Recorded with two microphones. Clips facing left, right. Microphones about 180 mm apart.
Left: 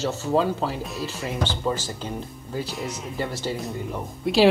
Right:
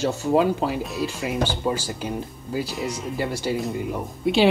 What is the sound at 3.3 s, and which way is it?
Speech, 10° right (ahead or behind).